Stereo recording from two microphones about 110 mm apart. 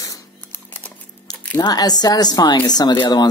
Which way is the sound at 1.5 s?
35° left (ahead or behind).